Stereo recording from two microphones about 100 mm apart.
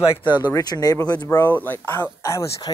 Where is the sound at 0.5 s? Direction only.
35° left (ahead or behind).